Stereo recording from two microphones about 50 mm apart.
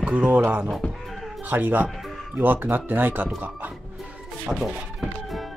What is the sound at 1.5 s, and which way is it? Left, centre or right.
Speech, right.